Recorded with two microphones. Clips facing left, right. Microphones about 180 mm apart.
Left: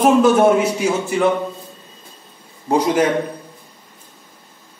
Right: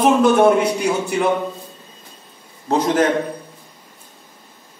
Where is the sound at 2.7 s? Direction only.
10° left (ahead or behind).